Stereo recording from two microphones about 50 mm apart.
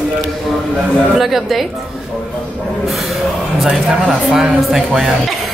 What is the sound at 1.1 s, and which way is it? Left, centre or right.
Speech, centre.